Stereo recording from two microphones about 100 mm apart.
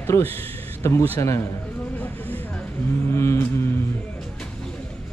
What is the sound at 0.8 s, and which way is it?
Speech, 25° left (ahead or behind).